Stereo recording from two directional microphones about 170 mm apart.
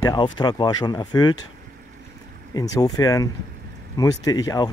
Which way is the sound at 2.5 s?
20° left (ahead or behind).